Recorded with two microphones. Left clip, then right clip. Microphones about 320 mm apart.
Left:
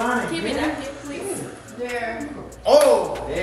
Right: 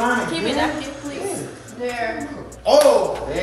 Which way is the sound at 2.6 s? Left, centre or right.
Centre.